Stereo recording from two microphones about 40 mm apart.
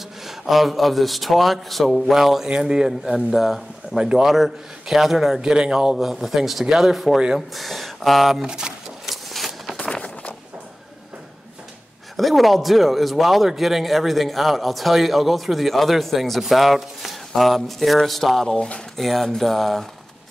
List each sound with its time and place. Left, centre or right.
0.2 s speech: centre
5.4 s speech: centre
8.5 s speech: centre
9.0 s a sound: centre
9.8 s a sound: centre
12.2 s speech: centre